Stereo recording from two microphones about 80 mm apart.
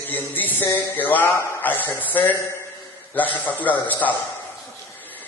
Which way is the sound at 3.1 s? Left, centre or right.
Left.